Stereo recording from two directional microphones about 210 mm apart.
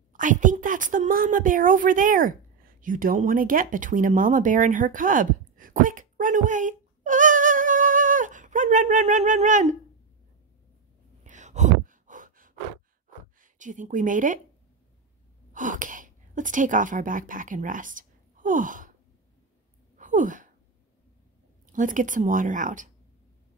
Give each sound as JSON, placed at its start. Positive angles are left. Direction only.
{"t": 0.1, "sound": "a woman's voice", "side_deg": -40}
{"t": 11.2, "sound": "a sound", "side_deg": -35}
{"t": 13.4, "sound": "speech", "side_deg": -40}
{"t": 15.5, "sound": "speech", "side_deg": -40}
{"t": 20.0, "sound": "a sound", "side_deg": -35}
{"t": 21.6, "sound": "speech", "side_deg": -40}